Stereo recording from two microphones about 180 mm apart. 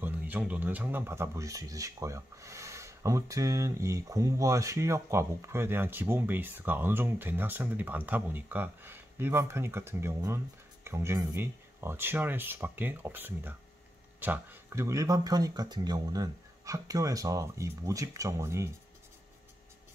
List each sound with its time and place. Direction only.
0.0 s speech: 10° right (ahead or behind)